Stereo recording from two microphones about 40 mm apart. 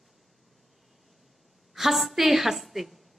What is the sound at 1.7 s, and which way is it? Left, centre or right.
A woman's voice, centre.